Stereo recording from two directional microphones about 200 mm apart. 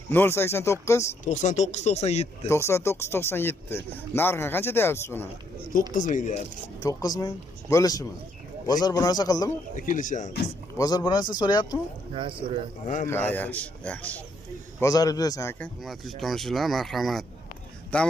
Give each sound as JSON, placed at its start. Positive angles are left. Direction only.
{"t": 0.1, "sound": "speech", "side_deg": 10}
{"t": 1.2, "sound": "speech", "side_deg": 40}
{"t": 2.4, "sound": "speech", "side_deg": 15}
{"t": 5.9, "sound": "speech", "side_deg": 40}
{"t": 6.8, "sound": "speech", "side_deg": 20}
{"t": 9.8, "sound": "speech", "side_deg": 40}
{"t": 10.8, "sound": "speech", "side_deg": 20}
{"t": 12.1, "sound": "speech", "side_deg": -25}
{"t": 12.8, "sound": "speech", "side_deg": 35}
{"t": 13.1, "sound": "speech", "side_deg": 10}
{"t": 14.8, "sound": "speech", "side_deg": 15}
{"t": 15.6, "sound": "speech", "side_deg": 0}